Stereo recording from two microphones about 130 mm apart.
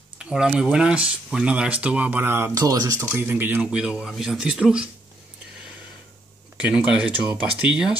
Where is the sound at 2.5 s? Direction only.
30° right (ahead or behind).